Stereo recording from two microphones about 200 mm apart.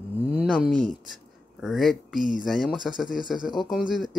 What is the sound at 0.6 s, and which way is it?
Speech, centre (ahead or behind).